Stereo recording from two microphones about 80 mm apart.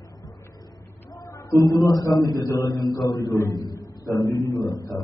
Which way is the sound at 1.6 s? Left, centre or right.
Left.